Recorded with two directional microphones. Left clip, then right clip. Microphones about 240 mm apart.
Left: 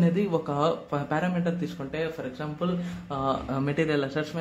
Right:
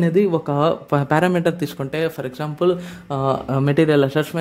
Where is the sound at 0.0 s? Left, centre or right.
Right.